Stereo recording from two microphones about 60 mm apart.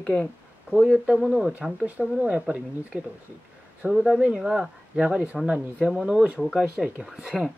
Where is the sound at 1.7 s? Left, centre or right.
Right.